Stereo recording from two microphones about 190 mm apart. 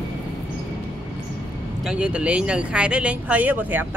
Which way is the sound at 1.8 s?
5° right (ahead or behind).